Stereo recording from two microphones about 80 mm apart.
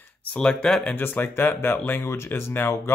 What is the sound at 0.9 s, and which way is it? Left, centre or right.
Speech, left.